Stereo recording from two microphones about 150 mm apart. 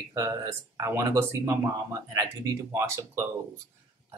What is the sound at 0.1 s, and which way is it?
Speech, 20° right (ahead or behind).